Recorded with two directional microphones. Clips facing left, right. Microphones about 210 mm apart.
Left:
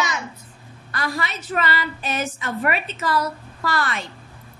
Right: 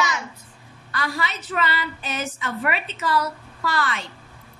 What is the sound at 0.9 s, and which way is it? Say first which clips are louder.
A woman's voice: left 1 dB; 45° left (ahead or behind).